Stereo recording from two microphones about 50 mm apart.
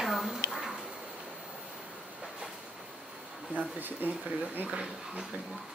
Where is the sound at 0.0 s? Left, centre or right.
Centre.